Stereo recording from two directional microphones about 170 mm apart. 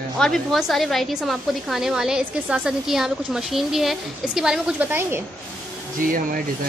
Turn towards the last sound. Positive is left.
turn(degrees=-55)  # may be behind; listen again after turning